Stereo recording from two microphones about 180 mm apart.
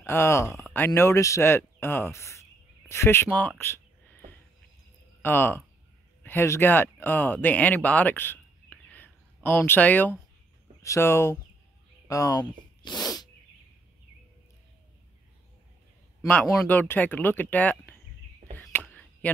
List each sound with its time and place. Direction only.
0.0 s speech: 15° left (ahead or behind)
5.2 s speech: 10° left (ahead or behind)
12.1 s sneeze: 20° left (ahead or behind)
16.4 s speech: 10° left (ahead or behind)
18.6 s a sound: 10° left (ahead or behind)